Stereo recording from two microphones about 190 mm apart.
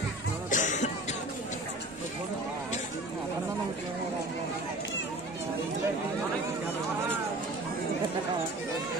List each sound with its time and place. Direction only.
0.5 s cough: 40° left (ahead or behind)